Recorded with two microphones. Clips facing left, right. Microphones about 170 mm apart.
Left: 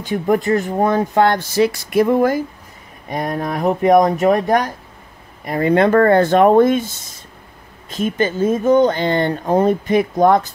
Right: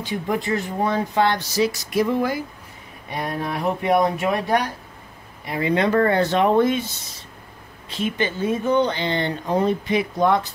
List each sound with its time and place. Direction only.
0.0 s speech: 50° left (ahead or behind)